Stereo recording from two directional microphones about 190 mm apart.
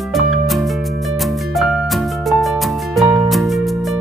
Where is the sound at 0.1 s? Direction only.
Centre (ahead or behind).